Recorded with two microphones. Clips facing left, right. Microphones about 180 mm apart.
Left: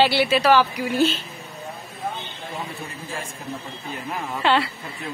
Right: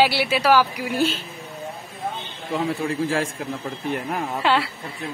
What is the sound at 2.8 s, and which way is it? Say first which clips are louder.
Speech: right 11 dB; 90° right.